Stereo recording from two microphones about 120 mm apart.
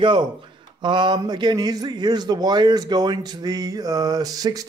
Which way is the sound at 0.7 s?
40° right (ahead or behind).